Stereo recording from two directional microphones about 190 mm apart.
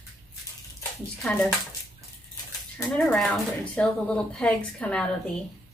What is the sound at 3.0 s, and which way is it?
Speech, centre (ahead or behind).